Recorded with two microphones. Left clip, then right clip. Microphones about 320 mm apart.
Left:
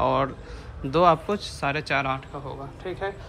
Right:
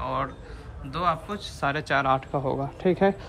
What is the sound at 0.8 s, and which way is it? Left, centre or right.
A man's voice, centre.